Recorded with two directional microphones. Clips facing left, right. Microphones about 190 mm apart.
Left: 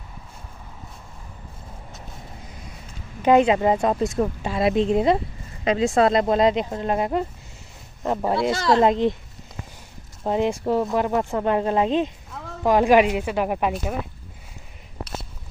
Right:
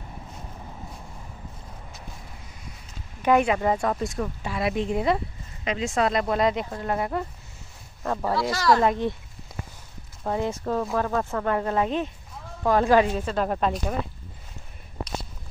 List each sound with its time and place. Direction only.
3.2 s a woman's voice: 25° left (ahead or behind)
10.2 s a woman's voice: 20° left (ahead or behind)